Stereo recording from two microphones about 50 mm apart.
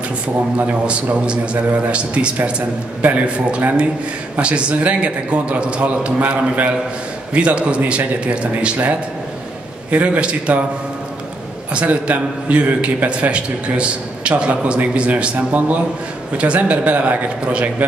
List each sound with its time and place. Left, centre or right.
0.6 s a man's voice: right
9.8 s a man's voice: right
11.7 s a man's voice: right
15.3 s a man's voice: right